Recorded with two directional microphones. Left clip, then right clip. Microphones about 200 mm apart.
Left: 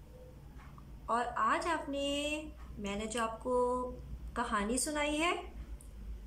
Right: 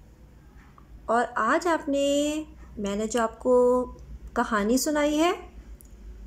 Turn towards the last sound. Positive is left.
turn(degrees=-40)  # may be behind; listen again after turning